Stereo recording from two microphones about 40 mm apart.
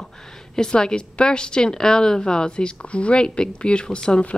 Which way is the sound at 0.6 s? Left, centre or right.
Centre.